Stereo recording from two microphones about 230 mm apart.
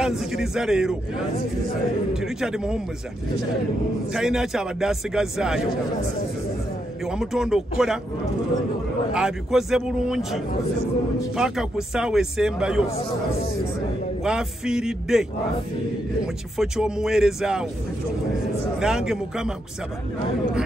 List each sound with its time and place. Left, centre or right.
0.0 s a man's voice: centre
4.1 s a man's voice: centre
7.1 s a man's voice: centre
9.1 s a man's voice: centre
12.8 s a man's voice: left
14.2 s a man's voice: centre
16.5 s a man's voice: centre
18.8 s a man's voice: centre